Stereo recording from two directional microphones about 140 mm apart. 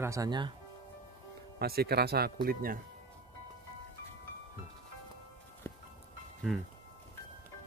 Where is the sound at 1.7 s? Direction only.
90° right.